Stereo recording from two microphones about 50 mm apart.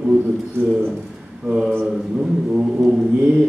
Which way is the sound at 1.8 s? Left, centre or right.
Centre.